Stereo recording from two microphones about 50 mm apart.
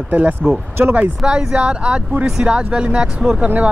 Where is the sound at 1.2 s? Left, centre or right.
Centre.